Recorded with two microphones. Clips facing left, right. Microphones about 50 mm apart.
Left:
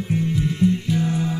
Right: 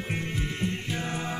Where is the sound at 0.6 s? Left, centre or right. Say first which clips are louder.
Left 13 dB; right.